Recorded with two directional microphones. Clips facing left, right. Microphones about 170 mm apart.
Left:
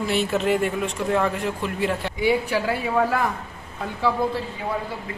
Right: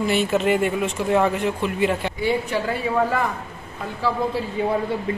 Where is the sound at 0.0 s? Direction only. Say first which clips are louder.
Right 2 dB; centre (ahead or behind).